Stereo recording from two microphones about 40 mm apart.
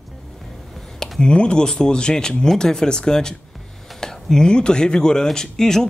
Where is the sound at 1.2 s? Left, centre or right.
Left.